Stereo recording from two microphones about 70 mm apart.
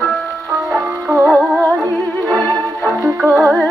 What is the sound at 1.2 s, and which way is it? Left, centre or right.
Music, centre.